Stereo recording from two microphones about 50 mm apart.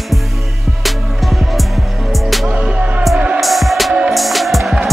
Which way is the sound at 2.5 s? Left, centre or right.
Centre.